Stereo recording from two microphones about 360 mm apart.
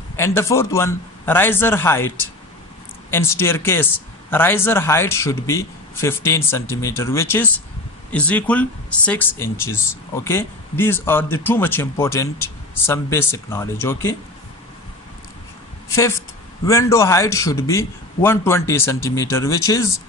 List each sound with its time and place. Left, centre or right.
0.1 s speech: centre
15.9 s speech: centre